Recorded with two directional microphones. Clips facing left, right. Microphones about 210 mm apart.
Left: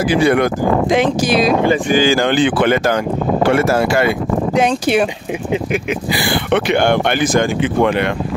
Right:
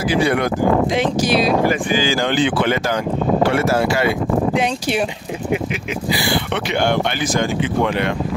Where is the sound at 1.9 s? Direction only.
55° left (ahead or behind).